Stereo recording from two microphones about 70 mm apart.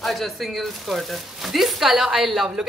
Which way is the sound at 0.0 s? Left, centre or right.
Centre.